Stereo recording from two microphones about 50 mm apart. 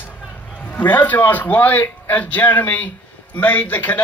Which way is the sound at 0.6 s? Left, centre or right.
Left.